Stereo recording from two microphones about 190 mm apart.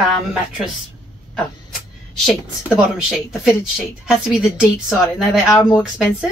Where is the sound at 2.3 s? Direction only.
5° right (ahead or behind).